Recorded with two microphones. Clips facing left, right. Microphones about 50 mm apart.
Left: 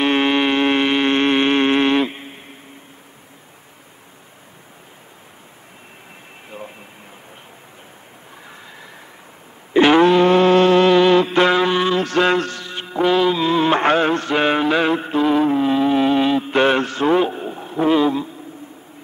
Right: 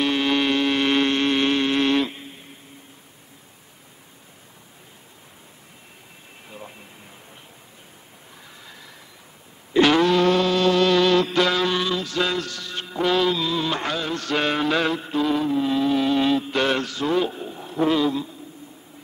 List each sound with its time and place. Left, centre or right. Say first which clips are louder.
0.0 s a sound: left 4 dB; left
8.5 s a sound: left 4 dB; left
9.8 s music: left 5 dB; left
11.9 s mantra: left 7 dB; left
12.6 s music: left 2 dB; centre
13.4 s music: left 8 dB; left
14.2 s mantra: left 5 dB; left
15.0 s music: left 6 dB; left